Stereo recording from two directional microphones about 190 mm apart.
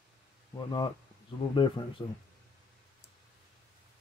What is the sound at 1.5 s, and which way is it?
Speech, 25° left (ahead or behind).